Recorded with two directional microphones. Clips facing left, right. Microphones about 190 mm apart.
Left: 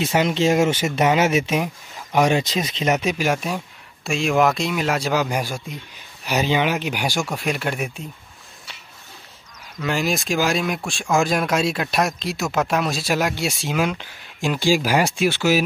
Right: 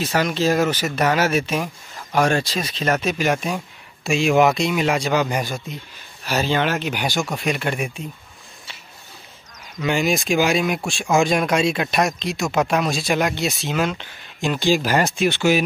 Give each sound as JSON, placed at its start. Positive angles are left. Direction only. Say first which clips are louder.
{"t": 0.0, "sound": "speech", "louder": "left 1 dB", "side_deg": 20}
{"t": 9.8, "sound": "speech", "louder": "right 2 dB", "side_deg": 0}